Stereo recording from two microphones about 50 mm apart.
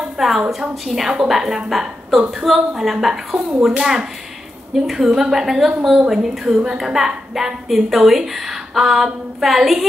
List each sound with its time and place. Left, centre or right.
0.5 s a woman's voice: centre
5.7 s a woman's voice: centre
6.0 s a woman's voice: centre